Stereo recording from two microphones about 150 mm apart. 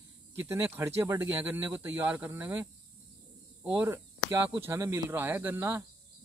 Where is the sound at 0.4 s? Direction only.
15° right (ahead or behind).